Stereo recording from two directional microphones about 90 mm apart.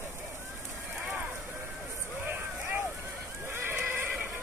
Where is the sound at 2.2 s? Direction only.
20° right (ahead or behind).